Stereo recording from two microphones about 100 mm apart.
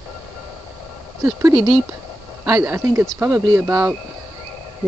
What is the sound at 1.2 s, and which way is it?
Speech, 30° right (ahead or behind).